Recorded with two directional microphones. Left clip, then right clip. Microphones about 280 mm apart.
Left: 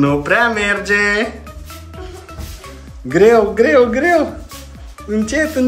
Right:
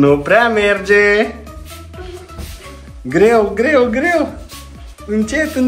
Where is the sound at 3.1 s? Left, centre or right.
Centre.